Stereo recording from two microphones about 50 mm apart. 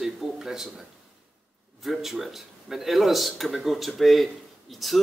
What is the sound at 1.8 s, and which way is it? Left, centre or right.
Speech, centre.